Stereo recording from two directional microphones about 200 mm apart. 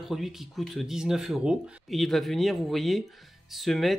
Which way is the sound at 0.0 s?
Centre (ahead or behind).